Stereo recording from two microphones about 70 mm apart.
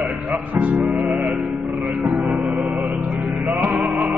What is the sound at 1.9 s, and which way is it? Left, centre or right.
Music, centre.